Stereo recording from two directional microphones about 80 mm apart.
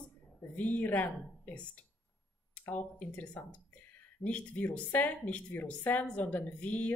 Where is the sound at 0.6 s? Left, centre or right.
Left.